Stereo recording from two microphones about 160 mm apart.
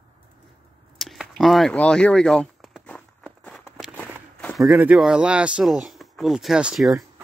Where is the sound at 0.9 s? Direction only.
Centre (ahead or behind).